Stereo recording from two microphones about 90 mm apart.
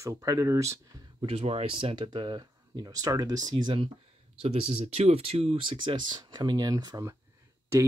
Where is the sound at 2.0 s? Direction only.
50° right (ahead or behind).